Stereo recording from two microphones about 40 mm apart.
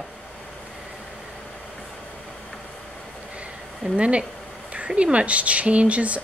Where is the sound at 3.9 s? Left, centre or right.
Right.